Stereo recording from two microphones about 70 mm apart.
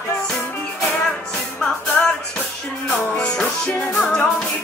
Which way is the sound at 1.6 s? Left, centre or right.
Centre.